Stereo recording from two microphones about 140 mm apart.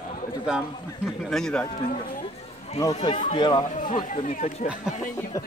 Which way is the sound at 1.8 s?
85° left.